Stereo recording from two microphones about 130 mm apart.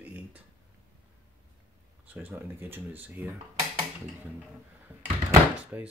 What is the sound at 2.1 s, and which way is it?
Speech, 15° right (ahead or behind).